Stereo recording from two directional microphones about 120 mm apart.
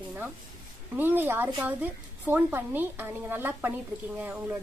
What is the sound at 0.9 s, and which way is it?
A woman's voice, 15° right (ahead or behind).